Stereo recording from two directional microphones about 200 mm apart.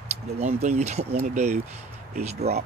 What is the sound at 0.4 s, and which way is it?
Speech, 35° right (ahead or behind).